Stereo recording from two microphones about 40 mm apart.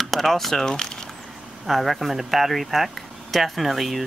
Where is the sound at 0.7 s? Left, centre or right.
Centre.